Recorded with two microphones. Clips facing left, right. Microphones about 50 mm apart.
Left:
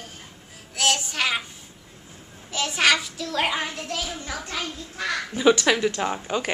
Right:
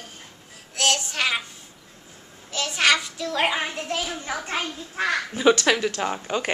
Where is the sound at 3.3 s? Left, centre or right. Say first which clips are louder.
Right 1 dB; centre.